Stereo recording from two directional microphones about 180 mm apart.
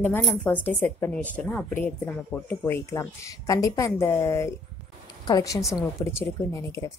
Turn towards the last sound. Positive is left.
turn(degrees=15)  # may be behind; listen again after turning